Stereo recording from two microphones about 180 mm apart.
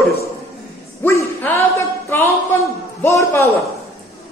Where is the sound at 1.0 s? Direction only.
10° left (ahead or behind).